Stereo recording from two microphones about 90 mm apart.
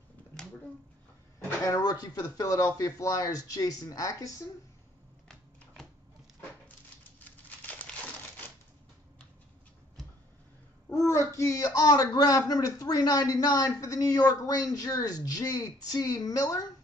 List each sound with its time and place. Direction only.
1.6 s speech: 40° left (ahead or behind)
7.2 s crumpling: 15° left (ahead or behind)
10.9 s a man's voice: 35° left (ahead or behind)